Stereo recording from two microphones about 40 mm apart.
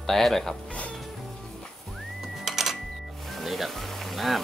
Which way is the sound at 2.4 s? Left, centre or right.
Centre.